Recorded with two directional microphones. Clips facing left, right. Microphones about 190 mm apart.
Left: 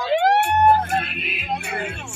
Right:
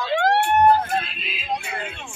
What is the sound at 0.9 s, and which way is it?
Music, 60° left (ahead or behind).